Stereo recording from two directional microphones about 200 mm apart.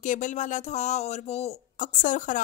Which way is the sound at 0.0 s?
40° left (ahead or behind).